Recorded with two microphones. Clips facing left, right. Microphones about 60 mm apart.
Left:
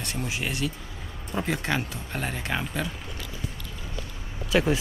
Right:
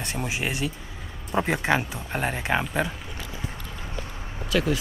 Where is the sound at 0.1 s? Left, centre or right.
Right.